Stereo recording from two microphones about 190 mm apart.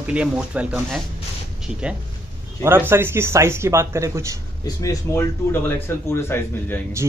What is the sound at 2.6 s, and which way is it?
Speech, 10° right (ahead or behind).